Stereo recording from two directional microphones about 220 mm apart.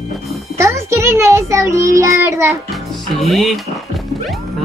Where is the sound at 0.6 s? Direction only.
10° right (ahead or behind).